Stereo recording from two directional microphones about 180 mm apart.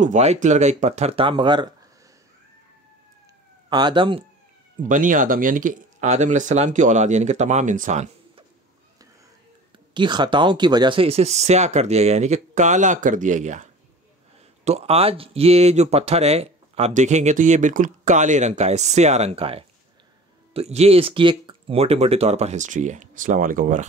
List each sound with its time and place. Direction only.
0.0 s speech: 40° right (ahead or behind)
3.7 s speech: 25° right (ahead or behind)
4.8 s speech: 45° right (ahead or behind)
9.9 s speech: 25° right (ahead or behind); by 23.9 s 45° right (ahead or behind)